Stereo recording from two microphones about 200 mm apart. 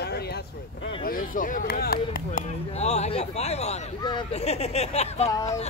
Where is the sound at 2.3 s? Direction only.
35° left (ahead or behind).